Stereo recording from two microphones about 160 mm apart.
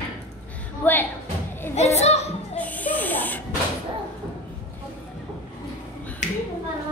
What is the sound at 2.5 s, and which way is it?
Speech, 10° left (ahead or behind).